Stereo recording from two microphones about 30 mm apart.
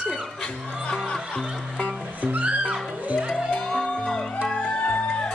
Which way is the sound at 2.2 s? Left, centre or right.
Right.